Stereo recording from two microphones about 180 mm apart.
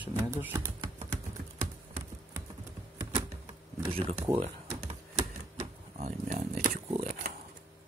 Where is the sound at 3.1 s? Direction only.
30° right (ahead or behind).